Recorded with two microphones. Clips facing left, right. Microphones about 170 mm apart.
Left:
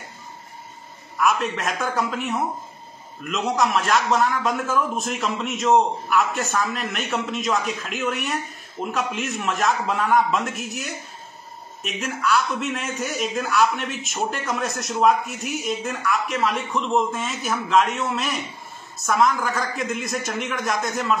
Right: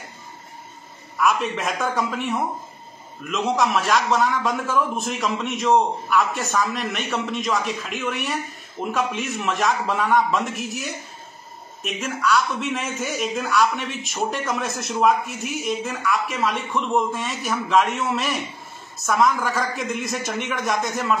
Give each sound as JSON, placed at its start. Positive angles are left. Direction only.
{"t": 1.1, "sound": "a man's voice", "side_deg": 0}